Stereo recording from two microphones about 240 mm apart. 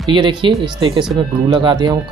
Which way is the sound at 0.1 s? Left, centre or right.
Centre.